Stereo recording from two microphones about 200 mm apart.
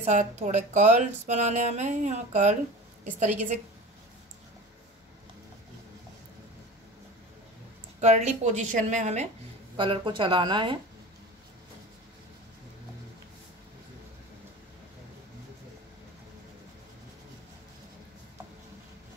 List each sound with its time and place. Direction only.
0.0 s speech: 35° right (ahead or behind)
8.0 s speech: 35° right (ahead or behind)
9.8 s speech: 25° right (ahead or behind)